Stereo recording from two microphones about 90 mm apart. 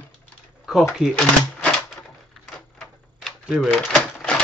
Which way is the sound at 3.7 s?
5° left (ahead or behind).